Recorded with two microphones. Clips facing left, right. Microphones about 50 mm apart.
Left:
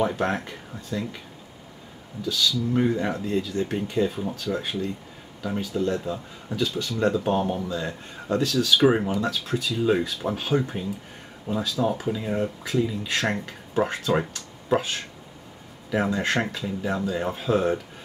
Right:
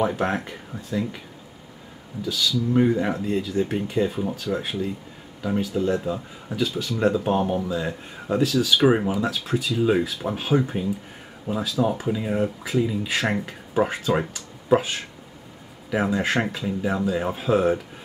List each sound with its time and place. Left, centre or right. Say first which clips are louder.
0.0 s speech: right 1 dB; centre
2.2 s speech: right 1 dB; centre